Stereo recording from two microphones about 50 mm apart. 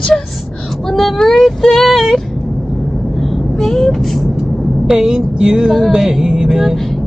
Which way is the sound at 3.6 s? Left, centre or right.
Centre.